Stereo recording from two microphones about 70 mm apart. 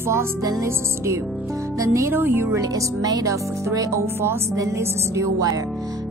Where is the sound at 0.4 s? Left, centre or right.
Right.